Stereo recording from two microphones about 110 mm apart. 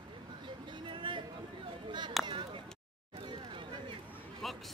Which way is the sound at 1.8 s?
45° right (ahead or behind).